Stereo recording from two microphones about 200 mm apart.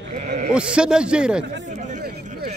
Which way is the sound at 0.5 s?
5° right (ahead or behind).